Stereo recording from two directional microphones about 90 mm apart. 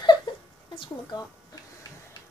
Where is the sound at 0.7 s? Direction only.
70° left (ahead or behind).